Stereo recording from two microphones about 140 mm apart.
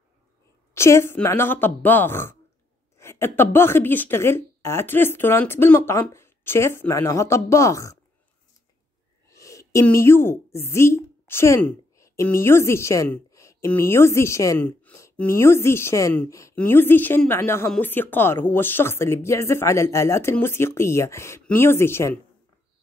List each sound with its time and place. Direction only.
0.7 s speech: 20° left (ahead or behind)
9.3 s a woman's voice: 20° left (ahead or behind)
14.8 s a sound: 15° left (ahead or behind)
15.1 s speech: 15° left (ahead or behind)